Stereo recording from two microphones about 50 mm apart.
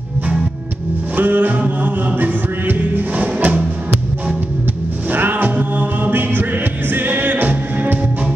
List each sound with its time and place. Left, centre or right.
1.1 s music: right
5.1 s music: right